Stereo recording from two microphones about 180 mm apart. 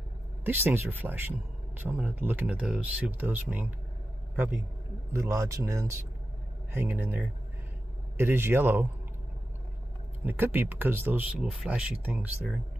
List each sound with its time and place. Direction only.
0.4 s speech: 10° right (ahead or behind)
5.1 s speech: 15° right (ahead or behind)
10.2 s speech: 10° right (ahead or behind)